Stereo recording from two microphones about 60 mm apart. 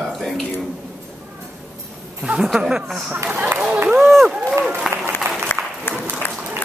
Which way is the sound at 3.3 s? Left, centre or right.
Right.